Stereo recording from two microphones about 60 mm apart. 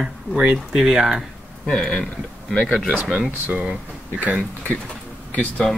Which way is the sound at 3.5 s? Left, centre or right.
Centre.